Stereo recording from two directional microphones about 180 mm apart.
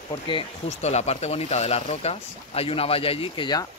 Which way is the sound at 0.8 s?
40° left (ahead or behind).